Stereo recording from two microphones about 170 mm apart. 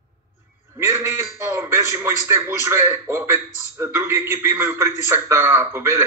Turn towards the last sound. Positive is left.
turn(degrees=-15)  # may be behind; listen again after turning